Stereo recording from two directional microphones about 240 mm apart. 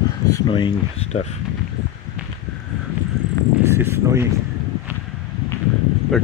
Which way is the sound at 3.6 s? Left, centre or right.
Centre.